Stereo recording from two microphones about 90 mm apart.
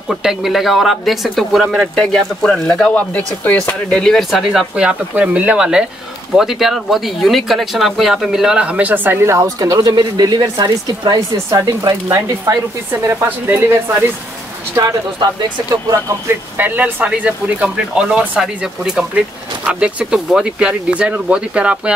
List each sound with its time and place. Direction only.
0.1 s speech: 5° right (ahead or behind); by 3.2 s 15° left (ahead or behind)
3.9 s speech: 5° left (ahead or behind); by 12.5 s 40° right (ahead or behind)
13.0 s a woman's voice: 30° right (ahead or behind)
15.1 s speech: 45° right (ahead or behind)
16.3 s speech: 20° right (ahead or behind)